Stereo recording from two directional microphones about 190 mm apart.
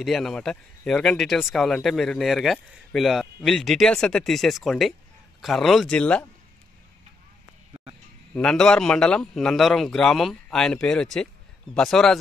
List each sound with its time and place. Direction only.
0.0 s speech: centre (ahead or behind)
8.4 s speech: 5° left (ahead or behind)